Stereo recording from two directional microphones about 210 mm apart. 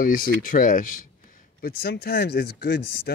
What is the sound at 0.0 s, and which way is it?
Speech, 40° left (ahead or behind).